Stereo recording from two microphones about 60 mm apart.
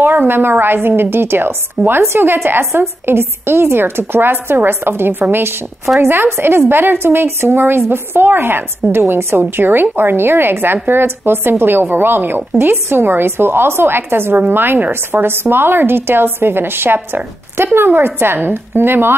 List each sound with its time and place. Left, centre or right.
0.0 s a woman's voice: right